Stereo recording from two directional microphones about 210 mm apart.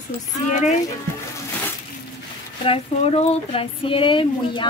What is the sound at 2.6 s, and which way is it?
Speech, 30° left (ahead or behind).